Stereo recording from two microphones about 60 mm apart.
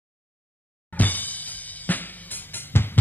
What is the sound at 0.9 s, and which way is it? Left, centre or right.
Music, left.